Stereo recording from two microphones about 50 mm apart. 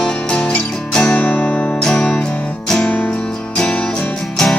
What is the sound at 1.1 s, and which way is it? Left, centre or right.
Music, left.